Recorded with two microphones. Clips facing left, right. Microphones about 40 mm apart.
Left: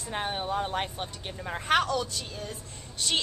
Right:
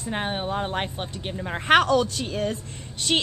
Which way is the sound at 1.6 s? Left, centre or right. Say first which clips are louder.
Right 7 dB; right.